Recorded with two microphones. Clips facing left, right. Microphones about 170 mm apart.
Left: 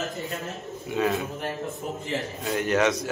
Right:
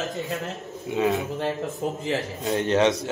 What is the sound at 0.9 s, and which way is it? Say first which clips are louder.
Speech: right 2 dB; 20° right (ahead or behind).